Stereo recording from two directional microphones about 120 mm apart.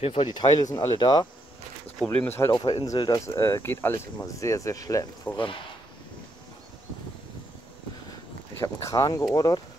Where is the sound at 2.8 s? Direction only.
35° left (ahead or behind).